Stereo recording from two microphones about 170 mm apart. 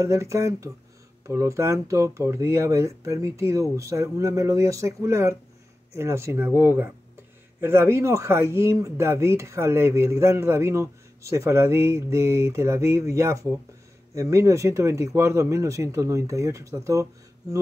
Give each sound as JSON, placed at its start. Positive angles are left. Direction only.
{"t": 0.0, "sound": "speech", "side_deg": -20}